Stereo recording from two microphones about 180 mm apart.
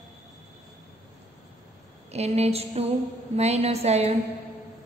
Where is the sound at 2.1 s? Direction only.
35° right (ahead or behind).